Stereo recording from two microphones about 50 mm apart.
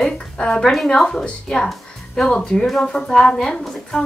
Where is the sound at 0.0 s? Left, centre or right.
Centre.